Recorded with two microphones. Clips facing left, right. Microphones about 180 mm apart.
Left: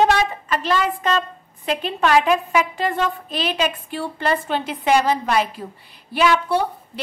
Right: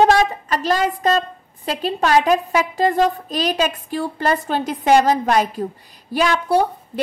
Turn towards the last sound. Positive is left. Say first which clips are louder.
# right 1 dB
turn(degrees=-40)  # may be behind; listen again after turning